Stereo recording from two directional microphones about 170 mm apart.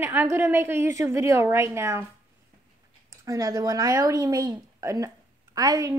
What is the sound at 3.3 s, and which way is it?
Speech, 20° right (ahead or behind).